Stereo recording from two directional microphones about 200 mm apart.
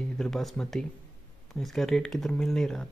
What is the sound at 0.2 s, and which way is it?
Speech, centre (ahead or behind).